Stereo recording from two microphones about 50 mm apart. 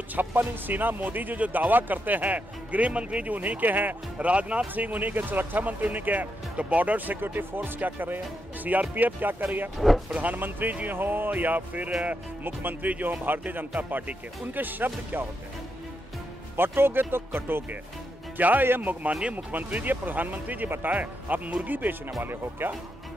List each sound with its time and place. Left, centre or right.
0.1 s speech: right
4.3 s speech: right
4.7 s speech: right
9.8 s speech: centre
10.1 s speech: right
16.5 s speech: right
18.4 s speech: right